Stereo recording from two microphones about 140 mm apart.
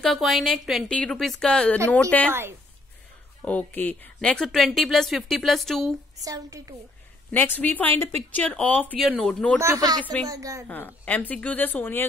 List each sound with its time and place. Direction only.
0.0 s speech: centre (ahead or behind)
3.4 s speech: 10° left (ahead or behind)
6.2 s speech: 25° right (ahead or behind)
7.2 s speech: 15° left (ahead or behind)
9.6 s speech: 25° right (ahead or behind)
10.7 s speech: 10° left (ahead or behind)